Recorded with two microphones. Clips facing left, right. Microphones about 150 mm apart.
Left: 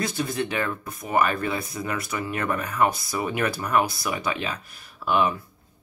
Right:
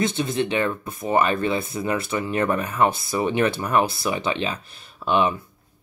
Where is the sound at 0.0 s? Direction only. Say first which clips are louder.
Right 4 dB; 25° right (ahead or behind).